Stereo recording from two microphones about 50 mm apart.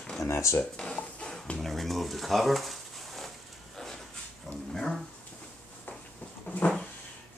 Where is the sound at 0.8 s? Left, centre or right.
Centre.